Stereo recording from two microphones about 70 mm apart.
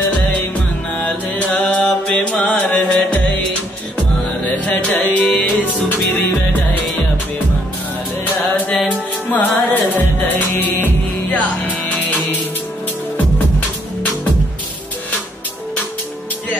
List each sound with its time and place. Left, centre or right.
0.9 s mantra: centre
3.0 s music: left
4.6 s music: left
9.3 s music: left